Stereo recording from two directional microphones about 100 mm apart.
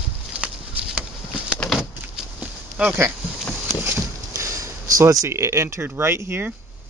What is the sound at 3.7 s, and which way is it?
Speech, 20° right (ahead or behind).